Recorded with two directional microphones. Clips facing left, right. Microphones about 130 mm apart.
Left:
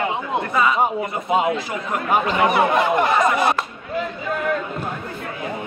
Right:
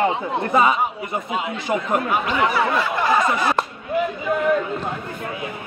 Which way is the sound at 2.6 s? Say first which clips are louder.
Left 3 dB; 20° left (ahead or behind).